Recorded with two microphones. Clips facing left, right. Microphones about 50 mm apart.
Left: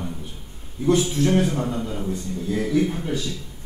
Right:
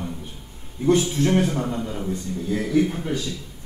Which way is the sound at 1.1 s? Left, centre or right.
Right.